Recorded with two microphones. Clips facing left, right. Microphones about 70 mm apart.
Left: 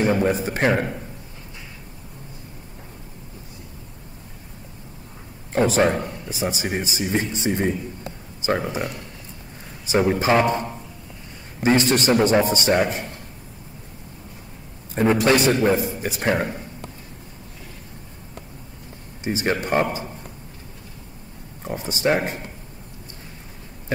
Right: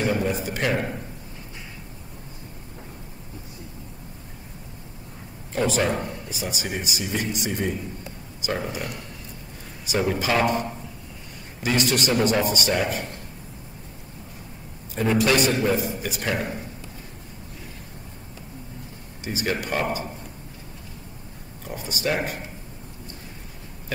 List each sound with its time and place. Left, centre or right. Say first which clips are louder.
0.0 s a man's voice: left 4 dB; left
5.5 s speech: left 5 dB; left
15.0 s speech: left 3 dB; left
19.2 s speech: left 4 dB; left
21.6 s speech: left 5 dB; left